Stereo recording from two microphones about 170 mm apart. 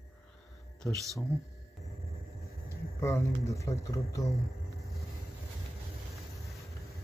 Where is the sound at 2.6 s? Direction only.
15° left (ahead or behind).